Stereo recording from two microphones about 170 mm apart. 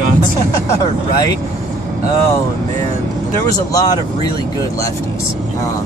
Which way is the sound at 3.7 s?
25° left (ahead or behind).